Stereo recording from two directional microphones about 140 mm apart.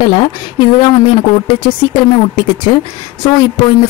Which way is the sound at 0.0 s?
35° left (ahead or behind).